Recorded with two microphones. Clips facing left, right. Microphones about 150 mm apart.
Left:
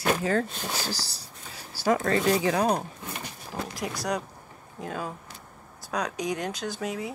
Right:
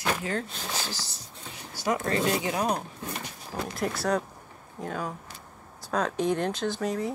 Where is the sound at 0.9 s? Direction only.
35° left (ahead or behind).